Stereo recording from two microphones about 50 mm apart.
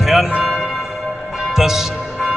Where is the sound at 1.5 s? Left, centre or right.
Centre.